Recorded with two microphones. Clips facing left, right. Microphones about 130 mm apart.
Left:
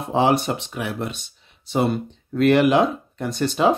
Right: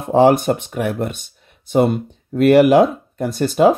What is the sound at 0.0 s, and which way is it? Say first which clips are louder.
Speech: right 6 dB; 50° right (ahead or behind).